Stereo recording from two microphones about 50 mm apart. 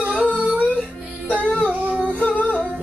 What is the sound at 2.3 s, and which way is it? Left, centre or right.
Music, left.